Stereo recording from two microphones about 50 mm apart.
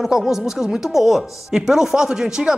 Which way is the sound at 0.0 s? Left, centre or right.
Centre.